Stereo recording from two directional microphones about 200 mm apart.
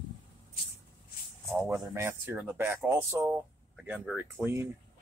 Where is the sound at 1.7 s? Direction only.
10° right (ahead or behind).